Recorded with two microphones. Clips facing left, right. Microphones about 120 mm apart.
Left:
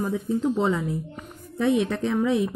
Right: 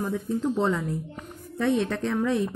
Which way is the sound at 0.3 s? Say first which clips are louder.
Left 2 dB; 5° left (ahead or behind).